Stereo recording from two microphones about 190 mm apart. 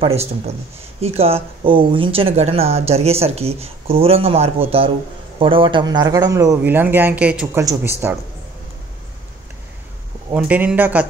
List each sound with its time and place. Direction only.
0.0 s speech: 35° right (ahead or behind); by 7.6 s 5° right (ahead or behind)
7.6 s speech: 20° right (ahead or behind)
10.3 s speech: 5° right (ahead or behind)